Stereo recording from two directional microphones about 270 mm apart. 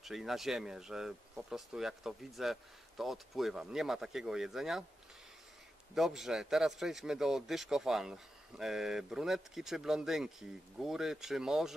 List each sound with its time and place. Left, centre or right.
0.0 s speech: centre
5.9 s speech: centre